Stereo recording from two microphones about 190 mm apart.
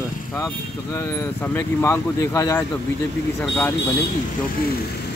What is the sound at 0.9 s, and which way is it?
Speech, 15° left (ahead or behind).